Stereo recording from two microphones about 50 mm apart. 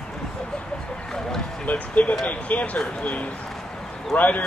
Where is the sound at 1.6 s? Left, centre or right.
Left.